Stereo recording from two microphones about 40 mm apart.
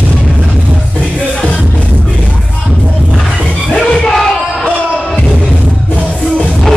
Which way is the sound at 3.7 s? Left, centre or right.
Centre.